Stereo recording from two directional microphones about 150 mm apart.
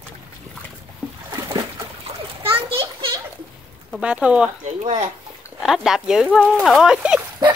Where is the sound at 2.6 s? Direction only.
40° right (ahead or behind).